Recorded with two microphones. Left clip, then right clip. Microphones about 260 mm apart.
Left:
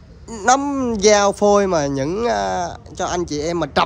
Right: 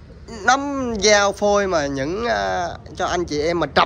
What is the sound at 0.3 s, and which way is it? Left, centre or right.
Speech, left.